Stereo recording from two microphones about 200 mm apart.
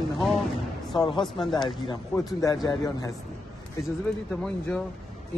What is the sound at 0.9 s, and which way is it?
Speech, 20° left (ahead or behind).